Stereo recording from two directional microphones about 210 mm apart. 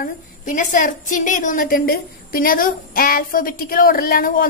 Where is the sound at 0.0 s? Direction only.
40° left (ahead or behind).